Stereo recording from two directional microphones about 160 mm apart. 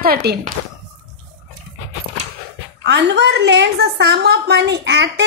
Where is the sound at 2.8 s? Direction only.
90° right.